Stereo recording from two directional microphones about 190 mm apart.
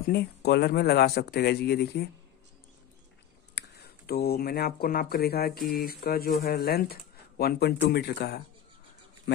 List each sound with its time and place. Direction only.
0.0 s speech: 55° left (ahead or behind)
3.5 s speech: 60° left (ahead or behind)